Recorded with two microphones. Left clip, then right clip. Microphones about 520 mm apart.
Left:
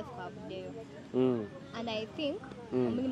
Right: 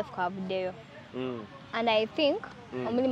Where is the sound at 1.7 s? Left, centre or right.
Right.